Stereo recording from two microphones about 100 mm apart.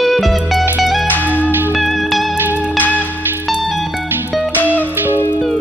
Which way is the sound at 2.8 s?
15° left (ahead or behind).